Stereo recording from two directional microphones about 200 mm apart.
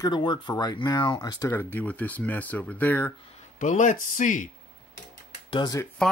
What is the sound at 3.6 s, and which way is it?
Speech, 40° left (ahead or behind).